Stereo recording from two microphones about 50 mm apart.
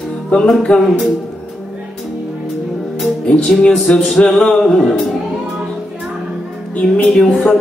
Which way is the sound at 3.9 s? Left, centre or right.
Left.